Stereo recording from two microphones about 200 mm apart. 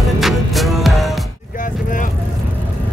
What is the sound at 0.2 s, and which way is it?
Music, centre (ahead or behind).